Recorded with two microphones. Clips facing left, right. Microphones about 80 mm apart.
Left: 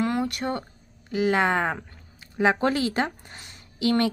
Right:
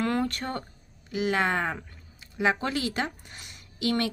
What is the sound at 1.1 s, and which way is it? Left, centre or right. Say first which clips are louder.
A woman's voice: left 4 dB; left.